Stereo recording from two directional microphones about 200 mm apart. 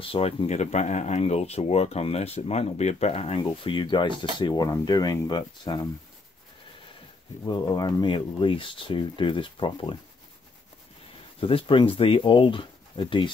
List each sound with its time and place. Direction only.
0.0 s speech: 25° left (ahead or behind)
7.4 s speech: 20° left (ahead or behind)
11.3 s speech: 25° left (ahead or behind)